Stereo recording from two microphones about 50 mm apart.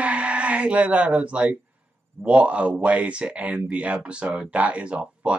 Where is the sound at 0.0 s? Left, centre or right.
Right.